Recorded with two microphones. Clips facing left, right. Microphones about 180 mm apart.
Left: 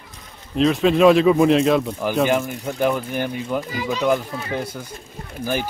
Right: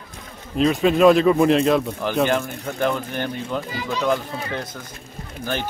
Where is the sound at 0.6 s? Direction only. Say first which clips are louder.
Left 1 dB; centre (ahead or behind).